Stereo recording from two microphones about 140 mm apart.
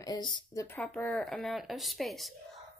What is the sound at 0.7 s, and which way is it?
A woman's voice, 5° left (ahead or behind).